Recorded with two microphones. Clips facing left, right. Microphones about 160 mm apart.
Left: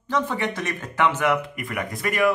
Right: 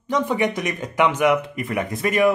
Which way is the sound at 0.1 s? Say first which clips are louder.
Right 4 dB; 15° right (ahead or behind).